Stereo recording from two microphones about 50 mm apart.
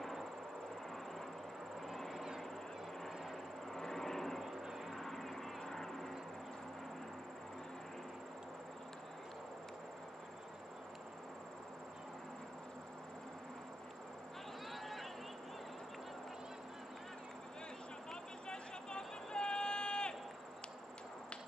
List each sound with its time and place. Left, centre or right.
1.8 s vehicle: centre
14.7 s a sound: centre
18.5 s vehicle: centre